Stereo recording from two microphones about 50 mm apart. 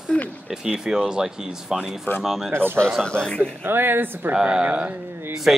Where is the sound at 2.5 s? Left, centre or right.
Right.